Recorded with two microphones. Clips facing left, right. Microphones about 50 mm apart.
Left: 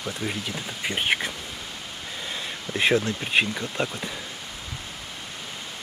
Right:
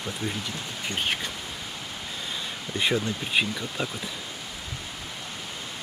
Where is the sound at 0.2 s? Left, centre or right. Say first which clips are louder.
Left 1 dB; centre.